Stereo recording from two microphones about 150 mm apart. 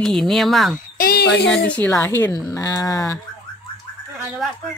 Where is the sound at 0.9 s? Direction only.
80° left.